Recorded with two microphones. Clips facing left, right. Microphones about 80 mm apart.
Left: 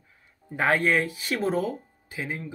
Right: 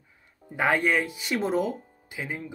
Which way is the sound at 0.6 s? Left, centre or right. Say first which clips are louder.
Left 1 dB; centre.